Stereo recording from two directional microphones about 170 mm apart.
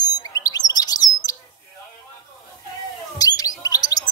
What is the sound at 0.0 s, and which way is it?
Bird, 20° left (ahead or behind).